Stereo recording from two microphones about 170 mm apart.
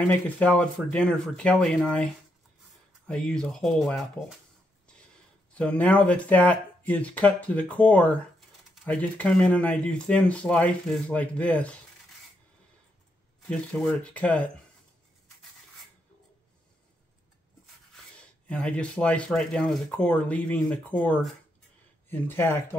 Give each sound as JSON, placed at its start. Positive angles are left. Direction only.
{"t": 0.4, "sound": "speech", "side_deg": 5}
{"t": 3.1, "sound": "speech", "side_deg": 5}
{"t": 5.5, "sound": "speech", "side_deg": 5}
{"t": 13.5, "sound": "speech", "side_deg": 5}
{"t": 18.1, "sound": "speech", "side_deg": 5}